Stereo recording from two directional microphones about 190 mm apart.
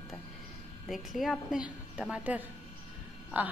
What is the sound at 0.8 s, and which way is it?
A woman's voice, centre (ahead or behind).